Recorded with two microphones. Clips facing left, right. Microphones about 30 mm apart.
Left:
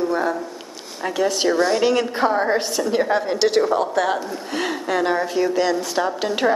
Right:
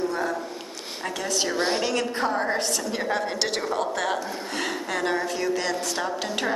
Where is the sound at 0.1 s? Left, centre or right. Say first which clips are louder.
Left 6 dB; centre.